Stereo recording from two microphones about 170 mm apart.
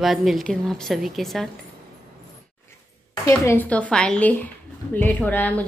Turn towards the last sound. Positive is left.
turn(degrees=10)  # may be behind; listen again after turning